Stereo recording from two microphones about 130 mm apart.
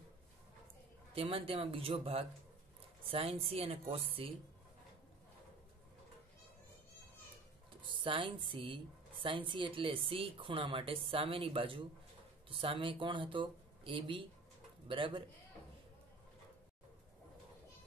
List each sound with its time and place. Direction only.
1.1 s speech: 45° right (ahead or behind)
7.8 s speech: 40° right (ahead or behind)